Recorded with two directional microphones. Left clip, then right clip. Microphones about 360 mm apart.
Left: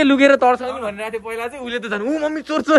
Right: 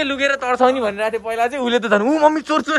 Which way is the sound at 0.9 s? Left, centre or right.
Centre.